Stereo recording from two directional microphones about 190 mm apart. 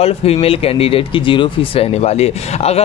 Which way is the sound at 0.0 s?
30° left (ahead or behind).